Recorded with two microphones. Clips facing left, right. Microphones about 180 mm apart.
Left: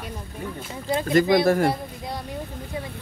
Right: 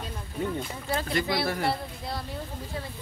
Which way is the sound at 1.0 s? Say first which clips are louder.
Left 12 dB; 45° left (ahead or behind).